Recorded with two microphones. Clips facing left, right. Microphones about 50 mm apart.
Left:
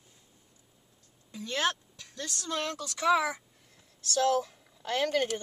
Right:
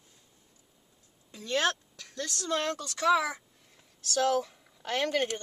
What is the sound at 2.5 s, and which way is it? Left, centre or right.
Speech, right.